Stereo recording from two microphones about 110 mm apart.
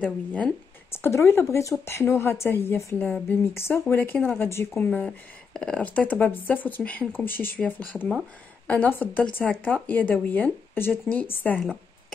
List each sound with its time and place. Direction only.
0.0 s speech: 10° left (ahead or behind)
0.9 s speech: 25° left (ahead or behind)
4.8 s speech: 10° left (ahead or behind)